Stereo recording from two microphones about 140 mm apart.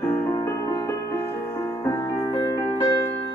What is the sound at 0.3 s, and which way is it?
Music, 25° left (ahead or behind).